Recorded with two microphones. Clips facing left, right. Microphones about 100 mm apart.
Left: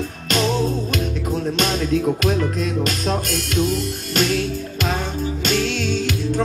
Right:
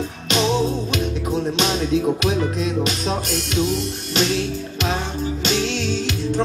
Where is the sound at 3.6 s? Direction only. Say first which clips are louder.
Left 1 dB; 50° left (ahead or behind).